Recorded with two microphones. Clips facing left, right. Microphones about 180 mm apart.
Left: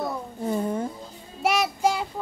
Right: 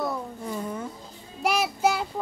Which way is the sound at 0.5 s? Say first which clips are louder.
Left 7 dB; 30° left (ahead or behind).